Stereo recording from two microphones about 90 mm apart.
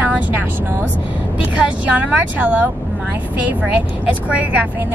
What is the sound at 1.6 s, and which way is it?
Speech, centre (ahead or behind).